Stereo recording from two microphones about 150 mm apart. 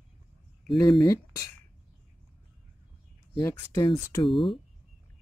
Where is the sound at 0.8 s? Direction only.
20° left (ahead or behind).